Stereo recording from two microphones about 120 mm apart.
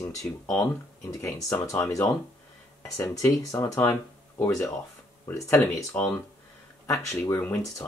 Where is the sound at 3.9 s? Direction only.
15° left (ahead or behind).